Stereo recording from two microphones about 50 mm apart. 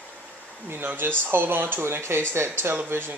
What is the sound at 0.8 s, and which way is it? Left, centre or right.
Speech, right.